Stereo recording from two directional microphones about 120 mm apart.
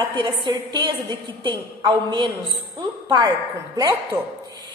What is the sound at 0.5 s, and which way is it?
A woman's voice, 35° right (ahead or behind).